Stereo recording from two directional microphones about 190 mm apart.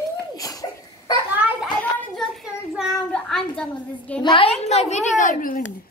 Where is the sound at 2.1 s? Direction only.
Centre (ahead or behind).